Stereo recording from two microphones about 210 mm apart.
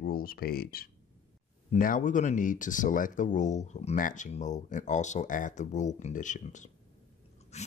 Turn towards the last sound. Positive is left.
turn(degrees=30)  # may be behind; listen again after turning